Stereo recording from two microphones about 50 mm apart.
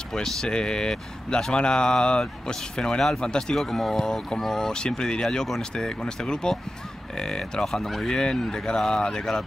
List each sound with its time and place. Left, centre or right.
0.1 s speech: centre